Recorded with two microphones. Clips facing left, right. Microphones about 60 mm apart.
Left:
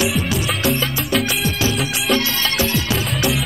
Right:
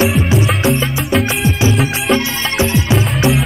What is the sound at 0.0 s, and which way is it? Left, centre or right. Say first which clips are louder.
Music: right 6 dB; right.